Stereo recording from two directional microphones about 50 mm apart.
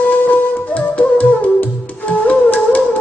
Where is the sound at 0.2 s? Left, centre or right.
Left.